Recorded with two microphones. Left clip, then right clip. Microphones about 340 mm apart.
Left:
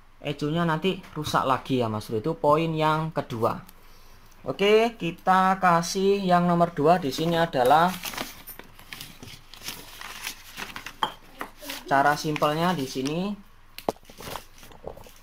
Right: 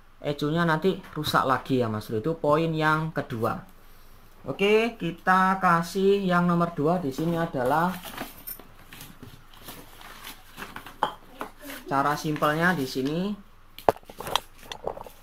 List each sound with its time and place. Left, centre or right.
0.2 s speech: centre
4.6 s speech: centre
6.8 s speech: left
11.9 s speech: centre
14.3 s scissors: right